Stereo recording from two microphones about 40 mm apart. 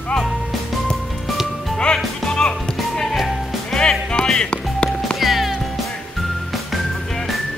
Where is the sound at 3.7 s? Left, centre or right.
Centre.